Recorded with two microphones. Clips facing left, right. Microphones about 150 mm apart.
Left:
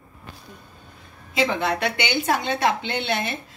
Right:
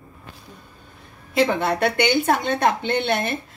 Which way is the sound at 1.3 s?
50° right (ahead or behind).